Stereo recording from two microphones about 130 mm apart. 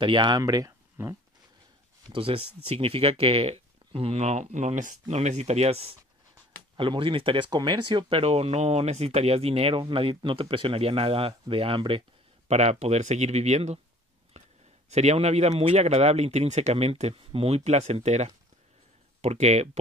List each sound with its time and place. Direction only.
0.0 s speech: 35° right (ahead or behind)
0.4 s speech: 25° right (ahead or behind)
2.0 s speech: 45° right (ahead or behind)
6.8 s speech: 40° right (ahead or behind)
12.4 s speech: 60° right (ahead or behind)
14.3 s a sound: 60° right (ahead or behind)
14.9 s speech: 60° right (ahead or behind)